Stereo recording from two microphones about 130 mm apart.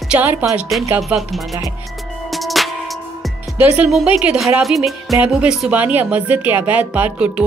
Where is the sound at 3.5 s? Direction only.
10° right (ahead or behind).